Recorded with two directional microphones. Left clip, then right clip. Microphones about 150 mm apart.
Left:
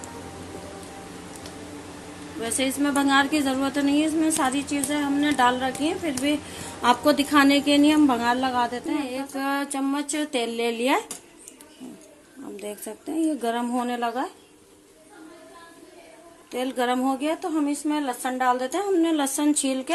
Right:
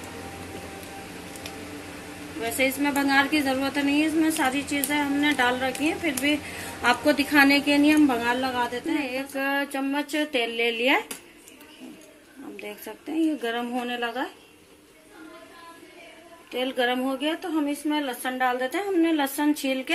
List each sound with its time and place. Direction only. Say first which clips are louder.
2.4 s a woman's voice: right 1 dB; 70° left (ahead or behind); by 8.9 s 90° left
8.9 s music: right 1 dB; 60° left (ahead or behind)
12.5 s a woman's voice: left 3 dB; 60° left (ahead or behind); by 14.2 s 85° left
16.4 s a woman's voice: even; 65° left (ahead or behind)